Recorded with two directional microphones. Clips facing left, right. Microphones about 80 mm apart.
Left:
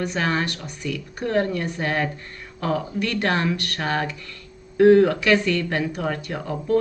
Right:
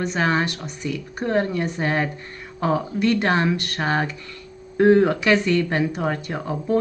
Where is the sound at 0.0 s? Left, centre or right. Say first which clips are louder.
Right 2 dB; right.